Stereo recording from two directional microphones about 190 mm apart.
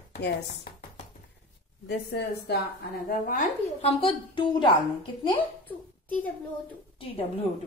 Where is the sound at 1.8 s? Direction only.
60° left (ahead or behind).